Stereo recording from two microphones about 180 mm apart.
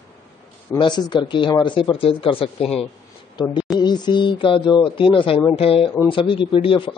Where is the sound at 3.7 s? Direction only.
25° left (ahead or behind).